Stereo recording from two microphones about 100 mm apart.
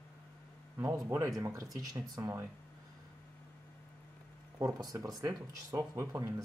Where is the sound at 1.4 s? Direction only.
35° right (ahead or behind).